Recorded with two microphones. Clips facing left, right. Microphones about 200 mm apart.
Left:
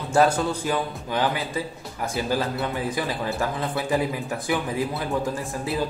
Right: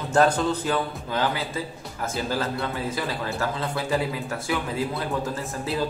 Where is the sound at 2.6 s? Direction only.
15° left (ahead or behind).